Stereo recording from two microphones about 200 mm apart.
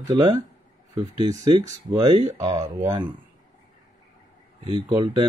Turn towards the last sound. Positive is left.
turn(degrees=-20)  # may be behind; listen again after turning